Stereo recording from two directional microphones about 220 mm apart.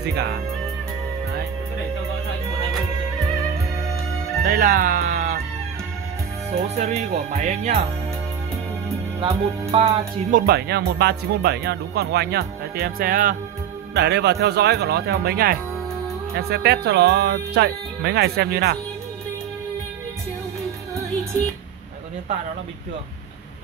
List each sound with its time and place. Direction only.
0.0 s speech: 50° right (ahead or behind)
4.5 s music: 40° right (ahead or behind)
6.5 s speech: 30° right (ahead or behind)
9.2 s speech: 25° right (ahead or behind)
10.4 s speech: 45° right (ahead or behind)
13.9 s speech: 50° right (ahead or behind)